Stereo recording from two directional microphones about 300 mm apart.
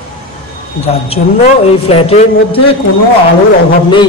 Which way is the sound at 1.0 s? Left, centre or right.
Centre.